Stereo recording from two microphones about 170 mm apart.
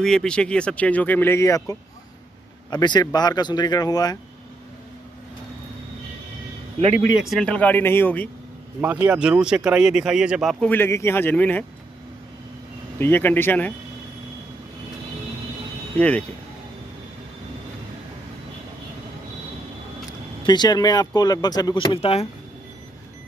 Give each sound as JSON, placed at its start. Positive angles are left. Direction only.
{"t": 0.0, "sound": "speech", "side_deg": 5}
{"t": 6.8, "sound": "speech", "side_deg": -40}
{"t": 7.2, "sound": "speech", "side_deg": 5}
{"t": 8.8, "sound": "speech", "side_deg": -10}
{"t": 10.7, "sound": "speech", "side_deg": 15}
{"t": 13.0, "sound": "speech", "side_deg": 10}
{"t": 16.0, "sound": "speech", "side_deg": 5}
{"t": 20.4, "sound": "speech", "side_deg": 25}